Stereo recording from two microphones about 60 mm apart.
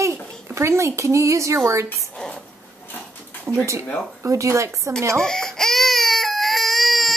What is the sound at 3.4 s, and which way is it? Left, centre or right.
Speech, right.